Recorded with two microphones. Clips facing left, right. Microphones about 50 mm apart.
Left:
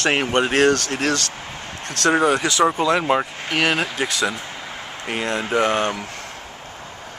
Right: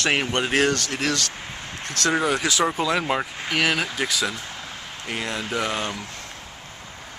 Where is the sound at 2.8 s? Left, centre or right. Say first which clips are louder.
Left 5 dB; centre.